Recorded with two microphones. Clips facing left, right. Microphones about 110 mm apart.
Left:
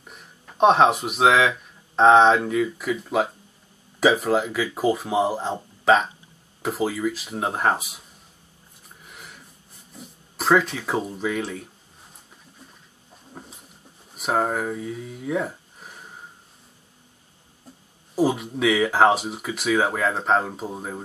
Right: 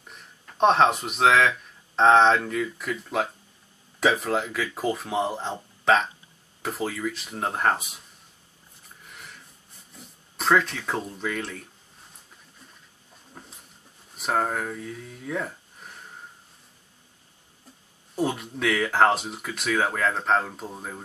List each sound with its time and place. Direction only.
0.0 s speech: 5° left (ahead or behind)
9.0 s a sound: 5° left (ahead or behind)
9.9 s speech: 5° left (ahead or behind)
13.3 s a sound: 10° left (ahead or behind)
14.1 s speech: 5° left (ahead or behind)
18.1 s speech: 5° left (ahead or behind)